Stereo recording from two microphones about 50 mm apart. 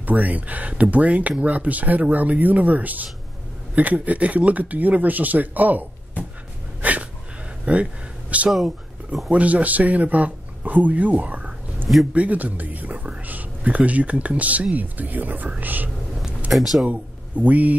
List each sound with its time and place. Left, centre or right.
0.0 s speech: right
6.8 s a sound: right
7.6 s speech: right
16.5 s speech: centre
17.4 s speech: right